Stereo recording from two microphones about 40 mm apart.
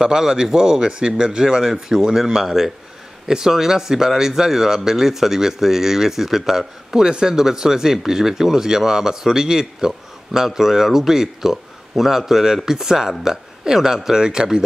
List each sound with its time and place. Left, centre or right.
0.0 s speech: centre